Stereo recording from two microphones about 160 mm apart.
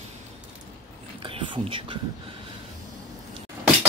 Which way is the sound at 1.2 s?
30° right (ahead or behind).